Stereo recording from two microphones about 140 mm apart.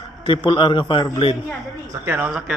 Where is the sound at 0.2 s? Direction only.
40° left (ahead or behind).